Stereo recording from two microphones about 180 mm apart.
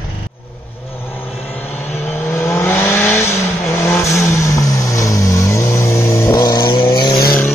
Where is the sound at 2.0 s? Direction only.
10° left (ahead or behind).